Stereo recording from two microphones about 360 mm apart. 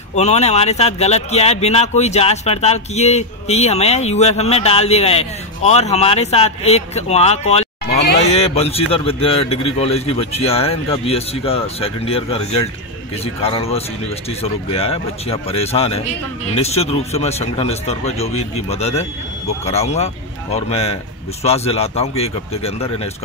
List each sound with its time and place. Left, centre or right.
0.1 s speech: centre